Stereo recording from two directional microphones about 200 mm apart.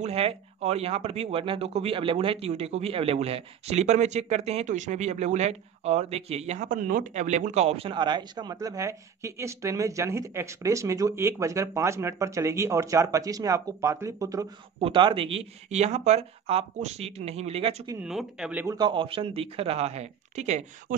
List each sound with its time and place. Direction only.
0.0 s speech: 30° right (ahead or behind)
18.0 s speech: 5° right (ahead or behind)
18.8 s speech: 25° right (ahead or behind)